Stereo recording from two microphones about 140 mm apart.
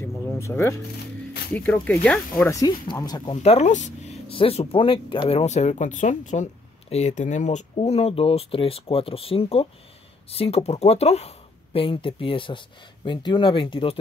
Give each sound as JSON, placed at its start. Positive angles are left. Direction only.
{"t": 0.0, "sound": "a sound", "side_deg": 15}
{"t": 1.5, "sound": "speech", "side_deg": 10}
{"t": 2.6, "sound": "speech", "side_deg": 25}
{"t": 3.4, "sound": "speech", "side_deg": 55}
{"t": 4.3, "sound": "speech", "side_deg": 40}